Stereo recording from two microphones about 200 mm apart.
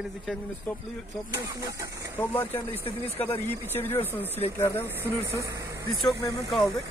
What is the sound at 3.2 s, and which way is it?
Speech, 10° left (ahead or behind).